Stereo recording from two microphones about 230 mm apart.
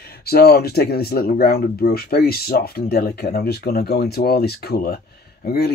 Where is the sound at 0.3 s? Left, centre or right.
Left.